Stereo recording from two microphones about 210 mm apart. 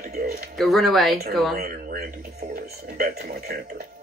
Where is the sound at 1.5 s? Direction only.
45° right (ahead or behind).